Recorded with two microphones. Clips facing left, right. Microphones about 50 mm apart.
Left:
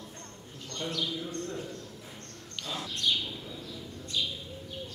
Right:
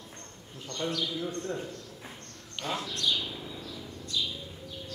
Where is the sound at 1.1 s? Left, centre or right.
Centre.